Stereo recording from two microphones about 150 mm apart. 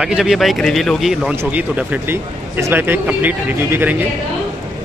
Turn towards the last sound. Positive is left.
turn(degrees=-15)  # may be behind; listen again after turning